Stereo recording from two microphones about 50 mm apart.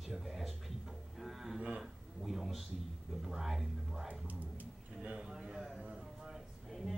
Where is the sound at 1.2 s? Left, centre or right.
Centre.